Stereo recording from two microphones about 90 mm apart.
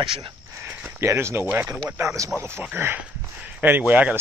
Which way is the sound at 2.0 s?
30° right (ahead or behind).